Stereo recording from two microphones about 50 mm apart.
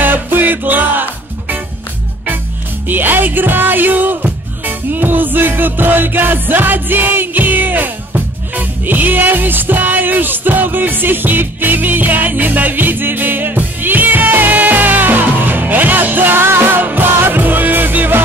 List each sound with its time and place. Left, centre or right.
0.0 s music: right
2.9 s music: right
16.4 s music: right
16.8 s music: right